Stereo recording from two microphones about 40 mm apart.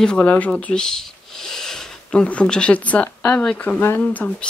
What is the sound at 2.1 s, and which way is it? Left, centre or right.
Speech, left.